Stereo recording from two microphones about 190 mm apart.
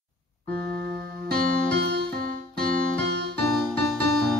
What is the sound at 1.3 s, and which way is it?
Music, 60° right (ahead or behind).